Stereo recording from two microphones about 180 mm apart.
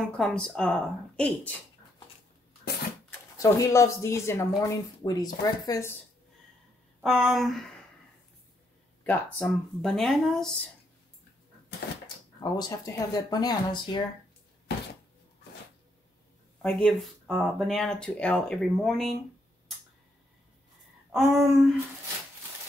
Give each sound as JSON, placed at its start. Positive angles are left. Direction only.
{"t": 0.2, "sound": "speech", "side_deg": 5}
{"t": 3.3, "sound": "speech", "side_deg": 15}
{"t": 7.0, "sound": "speech", "side_deg": 0}
{"t": 9.0, "sound": "speech", "side_deg": 10}
{"t": 12.5, "sound": "speech", "side_deg": 20}
{"t": 16.6, "sound": "speech", "side_deg": 5}
{"t": 21.1, "sound": "speech", "side_deg": 0}